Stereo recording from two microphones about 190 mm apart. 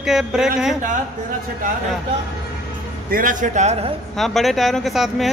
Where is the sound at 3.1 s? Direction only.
45° right (ahead or behind).